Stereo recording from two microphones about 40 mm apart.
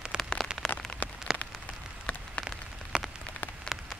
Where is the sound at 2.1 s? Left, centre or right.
Left.